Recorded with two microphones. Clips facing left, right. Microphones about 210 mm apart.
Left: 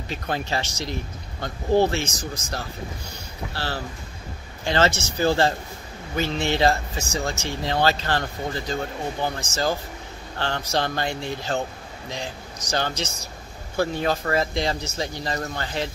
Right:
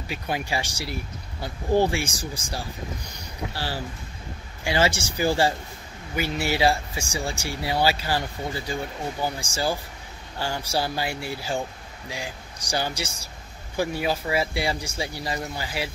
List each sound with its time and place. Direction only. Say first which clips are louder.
0.1 s speech: left 1 dB; 10° right (ahead or behind)